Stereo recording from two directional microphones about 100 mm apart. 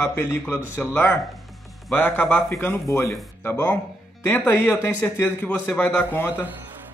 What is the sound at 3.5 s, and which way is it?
A man's voice, 15° left (ahead or behind).